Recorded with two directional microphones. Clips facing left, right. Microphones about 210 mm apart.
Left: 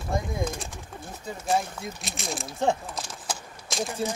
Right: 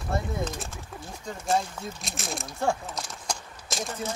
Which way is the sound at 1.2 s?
10° left (ahead or behind).